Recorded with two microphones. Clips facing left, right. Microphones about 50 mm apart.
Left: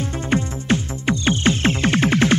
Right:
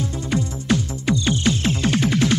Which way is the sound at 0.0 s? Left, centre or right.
Left.